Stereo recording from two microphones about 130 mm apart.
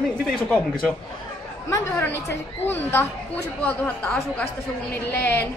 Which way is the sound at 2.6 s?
15° left (ahead or behind).